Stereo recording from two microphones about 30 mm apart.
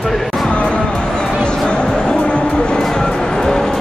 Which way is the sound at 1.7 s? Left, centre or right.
Left.